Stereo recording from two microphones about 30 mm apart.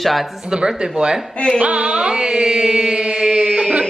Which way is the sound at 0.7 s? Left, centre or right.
Right.